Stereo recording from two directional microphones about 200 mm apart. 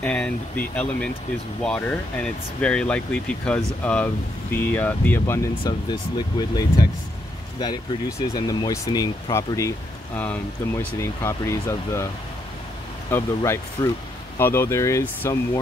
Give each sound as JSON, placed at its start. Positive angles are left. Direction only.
{"t": 0.0, "sound": "speech", "side_deg": 5}
{"t": 8.4, "sound": "speech", "side_deg": 20}
{"t": 13.1, "sound": "speech", "side_deg": 15}